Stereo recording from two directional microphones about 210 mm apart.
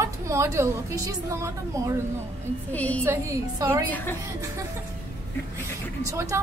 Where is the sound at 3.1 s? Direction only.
15° right (ahead or behind).